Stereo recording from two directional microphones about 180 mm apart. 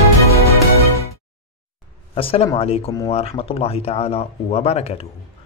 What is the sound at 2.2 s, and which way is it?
Speech, 30° left (ahead or behind).